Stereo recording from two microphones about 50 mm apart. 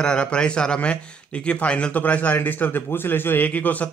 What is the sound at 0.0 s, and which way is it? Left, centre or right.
A man's voice, centre.